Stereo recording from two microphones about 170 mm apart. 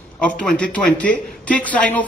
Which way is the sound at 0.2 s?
5° left (ahead or behind).